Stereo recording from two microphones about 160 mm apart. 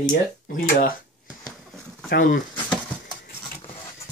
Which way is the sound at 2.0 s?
60° left (ahead or behind).